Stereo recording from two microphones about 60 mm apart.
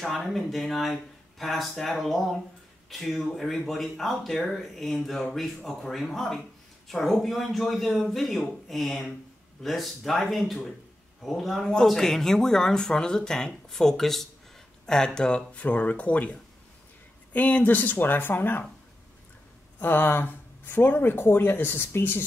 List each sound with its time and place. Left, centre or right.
0.0 s speech: centre; by 18.6 s left
19.8 s speech: left